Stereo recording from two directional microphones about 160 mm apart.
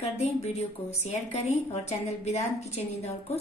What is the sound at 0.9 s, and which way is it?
A woman's voice, 40° left (ahead or behind).